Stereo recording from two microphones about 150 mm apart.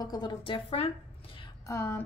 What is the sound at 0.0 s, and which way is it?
A woman's voice, 30° left (ahead or behind).